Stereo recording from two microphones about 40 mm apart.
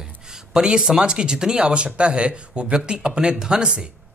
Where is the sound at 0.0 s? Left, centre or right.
Centre.